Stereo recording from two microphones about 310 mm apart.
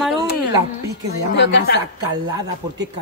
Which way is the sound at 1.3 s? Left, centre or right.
Left.